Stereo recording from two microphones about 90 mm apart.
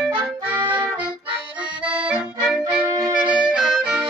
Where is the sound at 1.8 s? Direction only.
20° right (ahead or behind).